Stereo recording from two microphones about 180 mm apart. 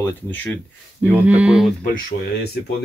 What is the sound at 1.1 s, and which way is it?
Speech, 10° right (ahead or behind).